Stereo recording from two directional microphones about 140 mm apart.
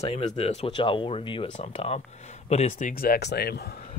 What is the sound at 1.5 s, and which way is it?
Speech, 50° left (ahead or behind).